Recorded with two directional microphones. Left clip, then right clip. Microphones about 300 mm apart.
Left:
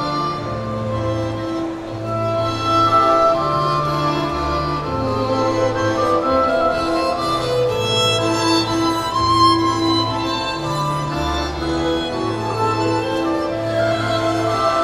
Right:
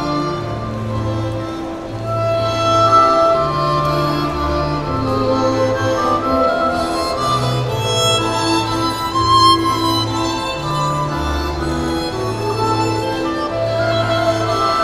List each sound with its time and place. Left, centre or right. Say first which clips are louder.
2.3 s music: right 3 dB; centre
5.3 s music: right 2 dB; centre
7.9 s music: right 1 dB; centre
14.1 s music: right 2 dB; centre